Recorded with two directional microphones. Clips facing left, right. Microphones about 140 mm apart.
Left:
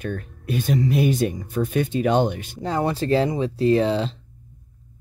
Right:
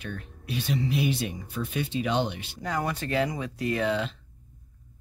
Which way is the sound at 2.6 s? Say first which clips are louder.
Left 7 dB; 30° left (ahead or behind).